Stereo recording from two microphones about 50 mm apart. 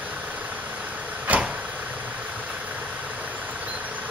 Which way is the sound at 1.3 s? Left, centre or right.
Right.